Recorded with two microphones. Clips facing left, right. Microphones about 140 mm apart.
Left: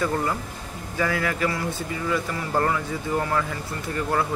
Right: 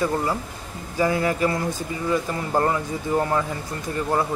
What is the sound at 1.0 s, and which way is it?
Speech, 25° right (ahead or behind).